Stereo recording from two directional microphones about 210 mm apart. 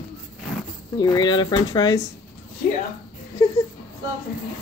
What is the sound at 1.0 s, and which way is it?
Speech, 20° left (ahead or behind).